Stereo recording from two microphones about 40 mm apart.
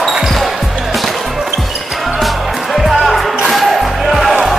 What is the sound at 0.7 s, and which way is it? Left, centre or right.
Music, centre.